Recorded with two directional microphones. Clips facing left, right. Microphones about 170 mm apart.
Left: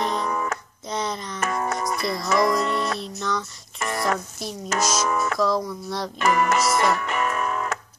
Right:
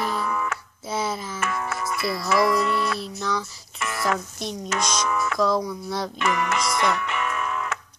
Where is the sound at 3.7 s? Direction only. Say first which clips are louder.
Left 3 dB; 40° left (ahead or behind).